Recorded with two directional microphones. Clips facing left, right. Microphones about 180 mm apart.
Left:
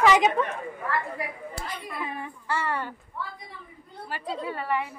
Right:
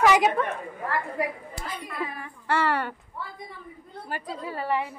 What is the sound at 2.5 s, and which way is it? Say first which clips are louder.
Speech: right 5 dB; 75° right (ahead or behind).